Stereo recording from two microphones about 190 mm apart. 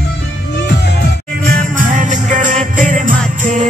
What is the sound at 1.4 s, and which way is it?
Music, 40° right (ahead or behind).